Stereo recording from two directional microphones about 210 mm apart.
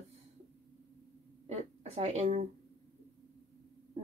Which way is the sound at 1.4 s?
30° right (ahead or behind).